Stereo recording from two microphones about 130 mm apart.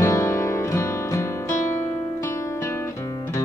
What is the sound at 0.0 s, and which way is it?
Music, 25° left (ahead or behind).